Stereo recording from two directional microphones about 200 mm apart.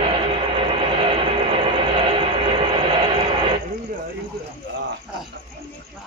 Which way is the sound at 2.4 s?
25° right (ahead or behind).